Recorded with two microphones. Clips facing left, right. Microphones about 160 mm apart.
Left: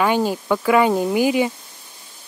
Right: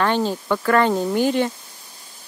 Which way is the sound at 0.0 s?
10° left (ahead or behind).